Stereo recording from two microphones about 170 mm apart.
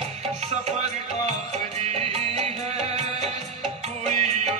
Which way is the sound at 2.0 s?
40° right (ahead or behind).